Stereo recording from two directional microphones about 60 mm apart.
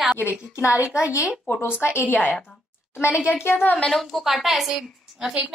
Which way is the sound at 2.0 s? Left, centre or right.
Left.